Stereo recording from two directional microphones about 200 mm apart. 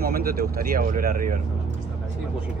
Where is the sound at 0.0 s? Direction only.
50° right (ahead or behind).